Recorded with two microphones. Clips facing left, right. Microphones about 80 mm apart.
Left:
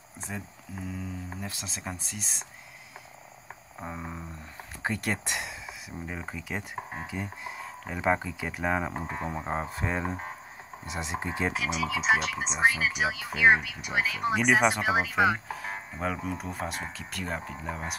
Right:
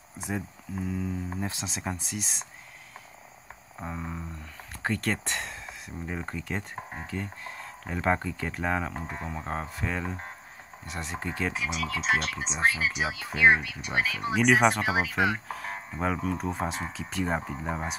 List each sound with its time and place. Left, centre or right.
0.2 s speech: centre
1.4 s speech: right
1.8 s speech: centre
3.8 s speech: centre
11.5 s speech: centre
17.2 s speech: centre